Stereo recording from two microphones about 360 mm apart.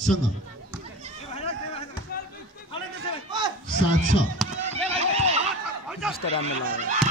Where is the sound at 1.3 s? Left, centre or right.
Centre.